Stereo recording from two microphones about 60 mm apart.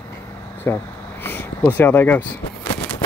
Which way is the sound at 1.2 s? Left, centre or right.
Left.